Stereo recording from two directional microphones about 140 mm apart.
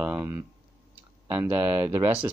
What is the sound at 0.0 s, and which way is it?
Speech, 15° right (ahead or behind).